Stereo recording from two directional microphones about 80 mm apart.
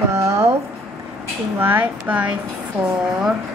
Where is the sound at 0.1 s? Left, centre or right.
Right.